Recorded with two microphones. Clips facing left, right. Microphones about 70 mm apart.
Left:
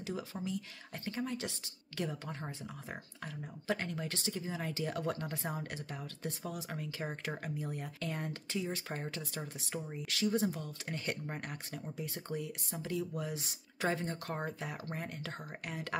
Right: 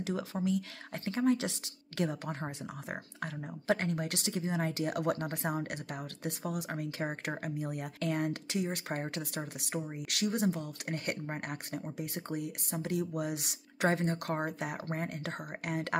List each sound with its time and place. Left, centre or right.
0.0 s speech: right
2.0 s speech: right
12.0 s speech: right